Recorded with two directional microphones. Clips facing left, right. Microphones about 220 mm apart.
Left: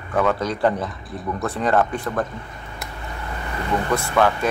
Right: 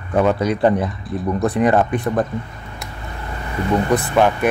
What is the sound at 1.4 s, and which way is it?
Speech, 15° right (ahead or behind).